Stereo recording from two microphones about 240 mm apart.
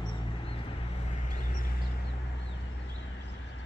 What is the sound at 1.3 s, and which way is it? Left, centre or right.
Vehicle, left.